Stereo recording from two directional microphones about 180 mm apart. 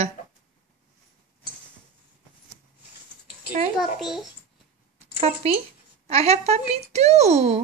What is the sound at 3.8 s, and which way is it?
Speech, centre (ahead or behind).